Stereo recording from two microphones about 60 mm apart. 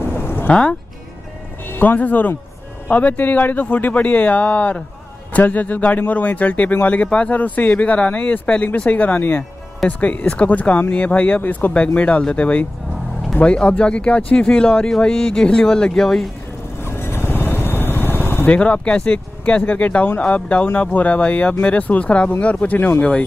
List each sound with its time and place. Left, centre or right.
0.2 s a sound: left
1.7 s speech: left; by 16.3 s centre
16.8 s vehicle: left
18.5 s speech: centre